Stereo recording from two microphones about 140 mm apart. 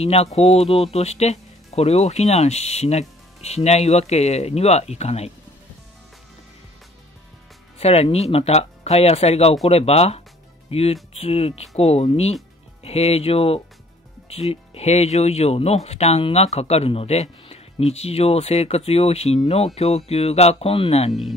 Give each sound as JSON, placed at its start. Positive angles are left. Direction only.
{"t": 0.0, "sound": "speech", "side_deg": 45}
{"t": 7.8, "sound": "speech", "side_deg": 45}
{"t": 21.1, "sound": "speech", "side_deg": 0}